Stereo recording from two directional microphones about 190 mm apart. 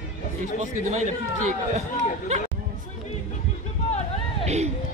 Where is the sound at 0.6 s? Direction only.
40° right (ahead or behind).